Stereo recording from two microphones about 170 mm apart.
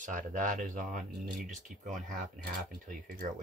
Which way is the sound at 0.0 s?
50° right (ahead or behind).